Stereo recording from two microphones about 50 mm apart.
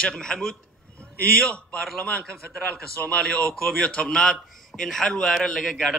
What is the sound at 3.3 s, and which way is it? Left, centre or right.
A man's voice, centre.